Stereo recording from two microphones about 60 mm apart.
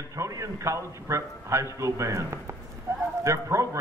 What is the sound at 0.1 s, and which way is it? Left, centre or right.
A man's voice, right.